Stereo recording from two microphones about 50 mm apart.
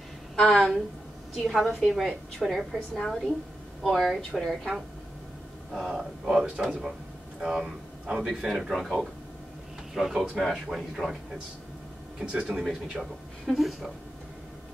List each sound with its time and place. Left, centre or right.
0.4 s a woman's voice: centre
1.3 s a woman's voice: centre
2.9 s a woman's voice: centre
5.7 s a woman's voice: centre
12.2 s speech: centre
12.4 s a woman's voice: centre